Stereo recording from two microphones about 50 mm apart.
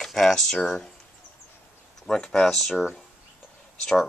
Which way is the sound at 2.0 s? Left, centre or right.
Centre.